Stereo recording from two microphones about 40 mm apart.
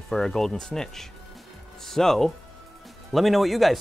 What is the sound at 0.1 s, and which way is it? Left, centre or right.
Speech, centre.